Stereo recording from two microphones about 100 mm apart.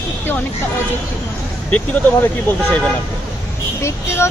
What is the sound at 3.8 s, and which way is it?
Speech, 25° left (ahead or behind).